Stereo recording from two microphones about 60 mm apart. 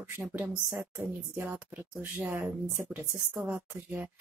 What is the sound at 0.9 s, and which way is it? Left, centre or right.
Speech, right.